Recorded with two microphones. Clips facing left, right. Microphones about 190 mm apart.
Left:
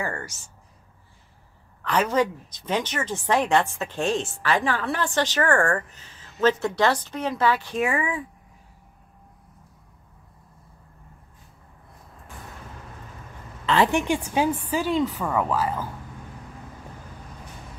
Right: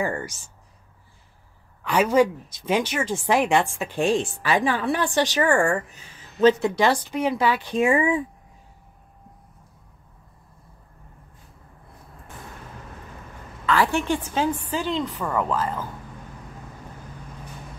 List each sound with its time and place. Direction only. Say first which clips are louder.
0.0 s a sound: right 4 dB; 15° right (ahead or behind)
1.8 s a woman's voice: right 4 dB; 10° right (ahead or behind)
13.7 s a woman's voice: left 1 dB; 20° left (ahead or behind)